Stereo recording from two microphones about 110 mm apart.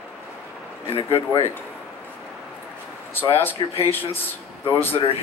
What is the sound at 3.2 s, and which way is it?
Speech, 20° left (ahead or behind).